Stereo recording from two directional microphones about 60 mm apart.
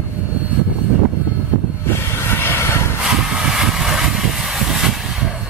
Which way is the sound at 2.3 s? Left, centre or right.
Left.